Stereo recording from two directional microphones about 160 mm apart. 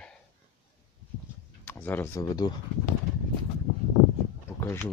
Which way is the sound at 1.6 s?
10° left (ahead or behind).